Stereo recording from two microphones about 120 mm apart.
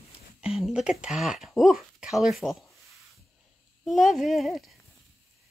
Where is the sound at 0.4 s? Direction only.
5° right (ahead or behind).